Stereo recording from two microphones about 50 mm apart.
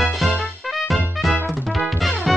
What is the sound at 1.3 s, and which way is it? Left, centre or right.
Music, right.